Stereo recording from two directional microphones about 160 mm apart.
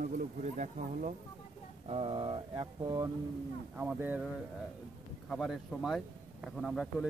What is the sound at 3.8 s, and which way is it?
Speech, 10° right (ahead or behind).